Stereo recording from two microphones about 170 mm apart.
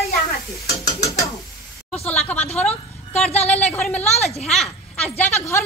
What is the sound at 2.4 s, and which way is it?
Speech, 40° left (ahead or behind).